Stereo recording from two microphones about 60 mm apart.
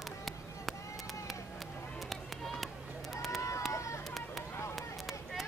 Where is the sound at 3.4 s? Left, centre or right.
Left.